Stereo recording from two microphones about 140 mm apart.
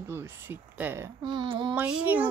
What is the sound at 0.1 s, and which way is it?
Speech, 15° right (ahead or behind).